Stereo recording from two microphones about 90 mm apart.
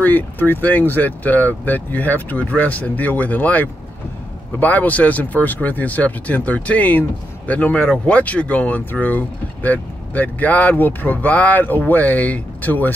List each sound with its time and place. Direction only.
0.0 s speech: 20° left (ahead or behind)